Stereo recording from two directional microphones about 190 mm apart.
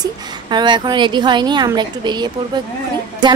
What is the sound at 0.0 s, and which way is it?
A woman's voice, 25° right (ahead or behind).